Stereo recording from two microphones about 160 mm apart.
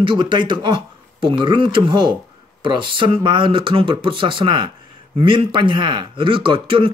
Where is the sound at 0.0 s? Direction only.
30° right (ahead or behind).